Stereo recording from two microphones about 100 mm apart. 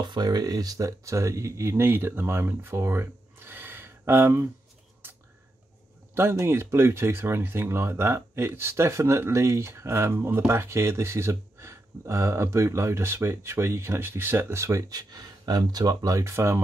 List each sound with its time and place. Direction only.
0.0 s speech: 50° right (ahead or behind); by 4.5 s 25° right (ahead or behind)
6.1 s speech: 25° right (ahead or behind)
14.9 s speech: 40° right (ahead or behind)